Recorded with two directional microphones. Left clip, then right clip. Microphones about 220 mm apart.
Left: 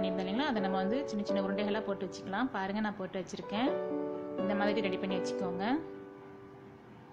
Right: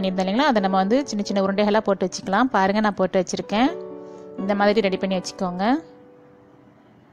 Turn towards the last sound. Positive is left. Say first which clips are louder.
# right 11 dB
turn(degrees=-40)  # may be behind; listen again after turning